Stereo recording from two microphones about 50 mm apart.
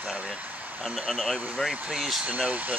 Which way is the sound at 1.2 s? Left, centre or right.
Centre.